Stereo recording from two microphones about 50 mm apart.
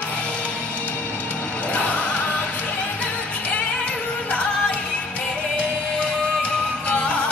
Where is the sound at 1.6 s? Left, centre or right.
Left.